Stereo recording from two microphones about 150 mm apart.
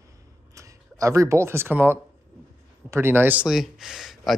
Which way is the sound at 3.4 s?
Centre (ahead or behind).